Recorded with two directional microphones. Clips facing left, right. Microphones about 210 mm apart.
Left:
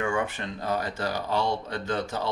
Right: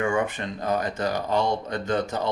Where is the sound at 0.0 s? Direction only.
15° right (ahead or behind).